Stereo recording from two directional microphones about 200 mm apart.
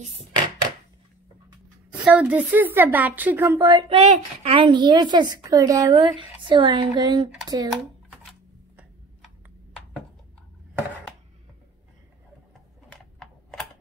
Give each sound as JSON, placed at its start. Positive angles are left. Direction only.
{"t": 1.9, "sound": "a woman's voice", "side_deg": -5}
{"t": 3.5, "sound": "a woman's voice", "side_deg": -25}
{"t": 12.9, "sound": "typing", "side_deg": 5}